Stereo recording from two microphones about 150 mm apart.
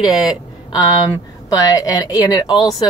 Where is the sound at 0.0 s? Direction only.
25° left (ahead or behind).